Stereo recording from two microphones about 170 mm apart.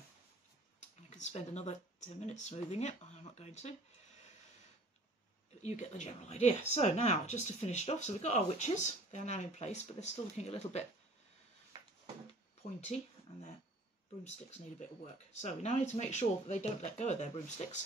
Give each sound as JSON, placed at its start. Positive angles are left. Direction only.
{"t": 1.1, "sound": "speech", "side_deg": 40}
{"t": 5.6, "sound": "speech", "side_deg": 45}
{"t": 12.8, "sound": "speech", "side_deg": 40}
{"t": 15.4, "sound": "speech", "side_deg": 45}